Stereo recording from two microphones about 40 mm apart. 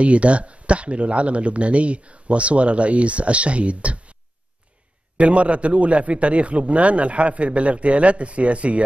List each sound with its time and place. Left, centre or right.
0.0 s speech: right